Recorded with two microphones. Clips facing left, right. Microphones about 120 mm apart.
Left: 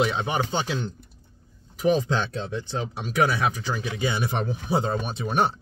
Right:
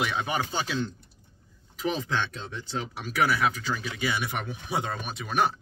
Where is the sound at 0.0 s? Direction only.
25° left (ahead or behind).